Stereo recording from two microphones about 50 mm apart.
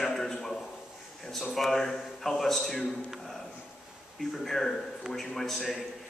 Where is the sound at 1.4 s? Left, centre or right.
Centre.